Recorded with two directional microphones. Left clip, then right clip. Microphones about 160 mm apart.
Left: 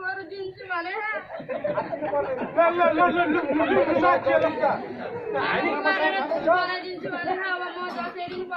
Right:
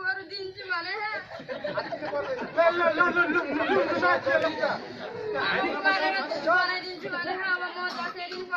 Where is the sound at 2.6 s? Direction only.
5° right (ahead or behind).